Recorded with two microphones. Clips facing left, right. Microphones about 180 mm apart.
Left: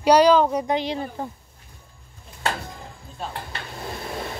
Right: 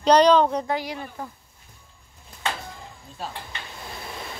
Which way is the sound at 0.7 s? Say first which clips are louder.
Left 4 dB; 25° left (ahead or behind).